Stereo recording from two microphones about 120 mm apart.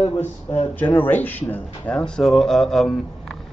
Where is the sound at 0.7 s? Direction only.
15° left (ahead or behind).